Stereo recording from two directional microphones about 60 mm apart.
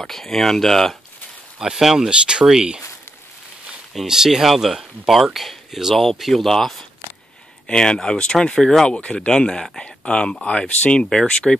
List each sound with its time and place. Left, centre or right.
0.0 s speech: centre
1.6 s speech: centre
3.9 s speech: centre
8.9 s speech: centre